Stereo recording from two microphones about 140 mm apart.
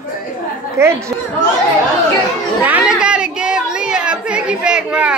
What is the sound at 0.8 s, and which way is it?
Speech, 20° right (ahead or behind).